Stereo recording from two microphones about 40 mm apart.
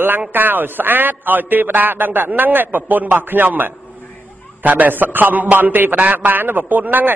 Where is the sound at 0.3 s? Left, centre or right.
Right.